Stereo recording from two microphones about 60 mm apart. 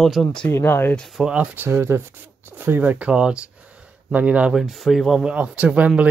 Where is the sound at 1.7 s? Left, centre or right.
Right.